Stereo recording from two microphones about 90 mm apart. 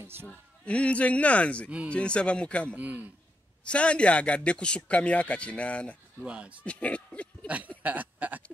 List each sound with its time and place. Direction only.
0.0 s speech: 25° right (ahead or behind)
0.3 s speech: 15° left (ahead or behind)
2.7 s a man's voice: 15° right (ahead or behind)
3.6 s speech: 15° left (ahead or behind)
6.2 s a man's voice: 10° right (ahead or behind)
6.6 s speech: 15° left (ahead or behind)
7.4 s a sound: 15° right (ahead or behind)